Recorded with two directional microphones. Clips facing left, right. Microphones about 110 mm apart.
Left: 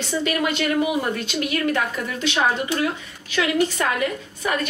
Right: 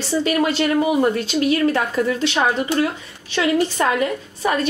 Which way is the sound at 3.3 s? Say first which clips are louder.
Right 2 dB; 30° right (ahead or behind).